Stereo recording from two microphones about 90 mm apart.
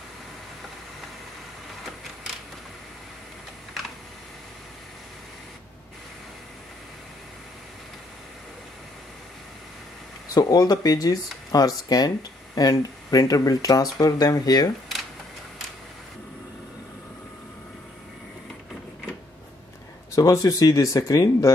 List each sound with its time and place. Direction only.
10.3 s speech: 45° left (ahead or behind)
20.2 s speech: 40° left (ahead or behind)